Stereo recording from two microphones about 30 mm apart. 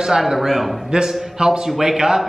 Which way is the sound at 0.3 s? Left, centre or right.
Centre.